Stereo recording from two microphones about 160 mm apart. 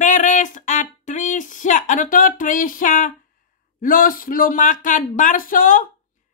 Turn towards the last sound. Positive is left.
turn(degrees=55)  # may be behind; listen again after turning